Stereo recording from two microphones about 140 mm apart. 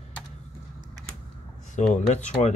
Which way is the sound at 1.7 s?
55° left (ahead or behind).